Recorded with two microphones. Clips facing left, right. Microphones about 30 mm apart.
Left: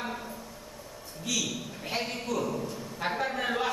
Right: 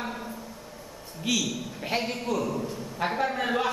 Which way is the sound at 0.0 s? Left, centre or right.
Centre.